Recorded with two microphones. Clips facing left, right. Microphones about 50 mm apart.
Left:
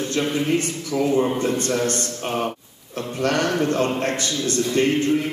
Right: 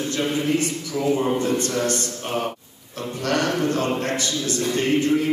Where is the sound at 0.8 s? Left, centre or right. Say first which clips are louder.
Left 5 dB; left.